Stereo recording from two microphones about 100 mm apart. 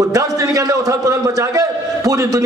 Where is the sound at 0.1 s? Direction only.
35° right (ahead or behind).